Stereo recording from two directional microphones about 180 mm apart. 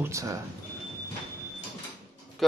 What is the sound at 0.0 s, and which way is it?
Speech, 15° right (ahead or behind).